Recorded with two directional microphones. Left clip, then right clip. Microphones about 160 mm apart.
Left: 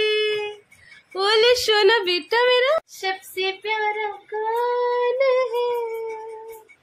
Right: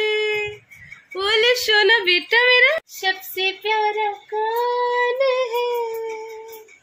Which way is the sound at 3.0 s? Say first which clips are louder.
Right 3 dB; 35° right (ahead or behind).